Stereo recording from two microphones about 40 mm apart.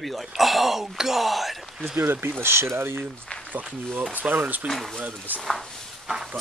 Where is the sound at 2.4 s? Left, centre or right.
Right.